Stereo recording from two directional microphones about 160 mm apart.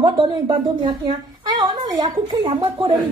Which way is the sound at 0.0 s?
30° right (ahead or behind).